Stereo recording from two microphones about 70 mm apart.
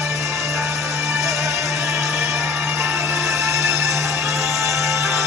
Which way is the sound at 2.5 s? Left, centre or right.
Right.